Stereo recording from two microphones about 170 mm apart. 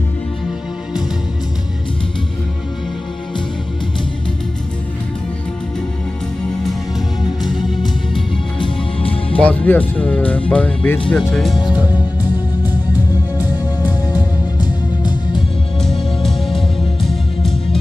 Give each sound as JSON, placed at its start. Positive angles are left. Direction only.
{"t": 7.4, "sound": "music", "side_deg": 0}
{"t": 8.5, "sound": "music", "side_deg": 30}
{"t": 9.4, "sound": "speech", "side_deg": 10}
{"t": 13.4, "sound": "music", "side_deg": 25}
{"t": 15.8, "sound": "music", "side_deg": 0}